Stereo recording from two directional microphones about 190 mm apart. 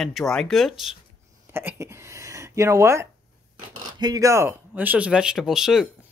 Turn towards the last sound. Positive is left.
turn(degrees=0)  # may be behind; listen again after turning